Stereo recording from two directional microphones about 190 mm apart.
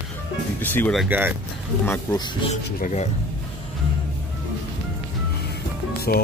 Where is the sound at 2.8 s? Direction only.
35° left (ahead or behind).